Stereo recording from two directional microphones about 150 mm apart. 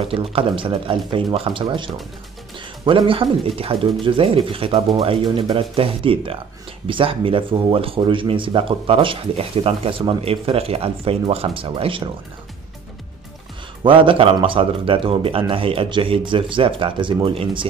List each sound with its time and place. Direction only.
0.1 s speech: 35° right (ahead or behind)
13.8 s speech: 35° right (ahead or behind)